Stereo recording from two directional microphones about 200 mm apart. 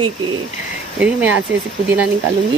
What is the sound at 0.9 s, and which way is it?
Speech, 5° right (ahead or behind).